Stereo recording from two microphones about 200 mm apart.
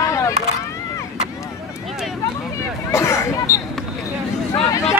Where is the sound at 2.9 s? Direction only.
15° left (ahead or behind).